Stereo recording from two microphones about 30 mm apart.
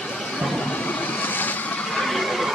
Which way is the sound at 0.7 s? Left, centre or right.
Left.